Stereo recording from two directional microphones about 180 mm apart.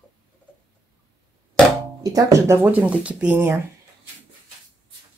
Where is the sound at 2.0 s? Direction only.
20° right (ahead or behind).